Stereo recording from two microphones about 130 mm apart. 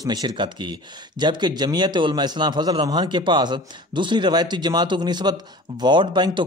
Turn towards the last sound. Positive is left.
turn(degrees=-35)  # may be behind; listen again after turning